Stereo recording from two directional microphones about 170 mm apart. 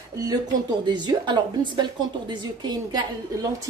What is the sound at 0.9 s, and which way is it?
A woman's voice, 25° right (ahead or behind).